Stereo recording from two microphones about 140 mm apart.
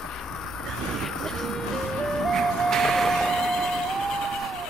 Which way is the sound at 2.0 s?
Centre (ahead or behind).